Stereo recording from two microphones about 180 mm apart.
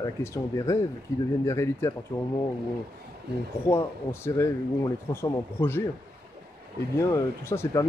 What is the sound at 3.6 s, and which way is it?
Speech, 15° left (ahead or behind).